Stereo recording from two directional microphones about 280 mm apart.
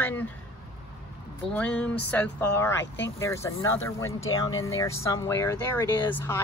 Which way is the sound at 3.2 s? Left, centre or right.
Centre.